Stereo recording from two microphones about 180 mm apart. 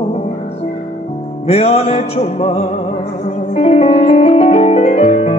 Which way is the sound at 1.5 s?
35° left (ahead or behind).